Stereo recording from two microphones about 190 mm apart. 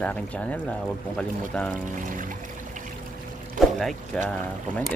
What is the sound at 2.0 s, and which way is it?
Music, 45° right (ahead or behind).